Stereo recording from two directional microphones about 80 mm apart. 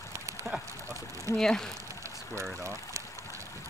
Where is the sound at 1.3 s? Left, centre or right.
Centre.